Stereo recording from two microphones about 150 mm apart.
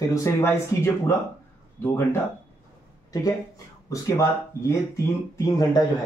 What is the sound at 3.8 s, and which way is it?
Speech, 20° left (ahead or behind).